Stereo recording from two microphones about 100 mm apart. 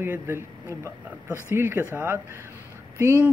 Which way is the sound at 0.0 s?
20° right (ahead or behind).